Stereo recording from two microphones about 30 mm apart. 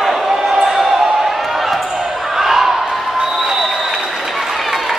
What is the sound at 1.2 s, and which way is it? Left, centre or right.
Basketball bounce, centre.